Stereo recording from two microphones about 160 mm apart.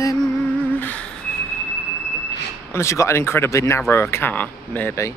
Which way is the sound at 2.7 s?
20° left (ahead or behind).